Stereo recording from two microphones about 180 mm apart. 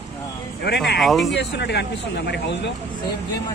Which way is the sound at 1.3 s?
70° left (ahead or behind).